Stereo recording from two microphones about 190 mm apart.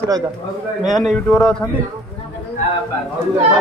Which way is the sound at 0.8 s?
Centre (ahead or behind).